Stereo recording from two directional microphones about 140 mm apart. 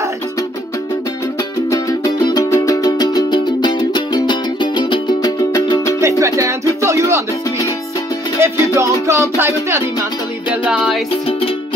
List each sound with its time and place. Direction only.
1.7 s music: 25° left (ahead or behind)
5.5 s music: 20° left (ahead or behind)
5.9 s music: 20° right (ahead or behind)
8.4 s music: 20° right (ahead or behind)
10.6 s music: 5° right (ahead or behind)